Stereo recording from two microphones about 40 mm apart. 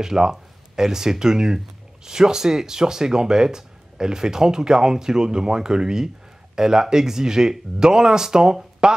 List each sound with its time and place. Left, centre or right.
0.0 s speech: centre